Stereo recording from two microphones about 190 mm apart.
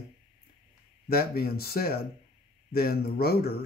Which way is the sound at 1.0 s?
55° left (ahead or behind).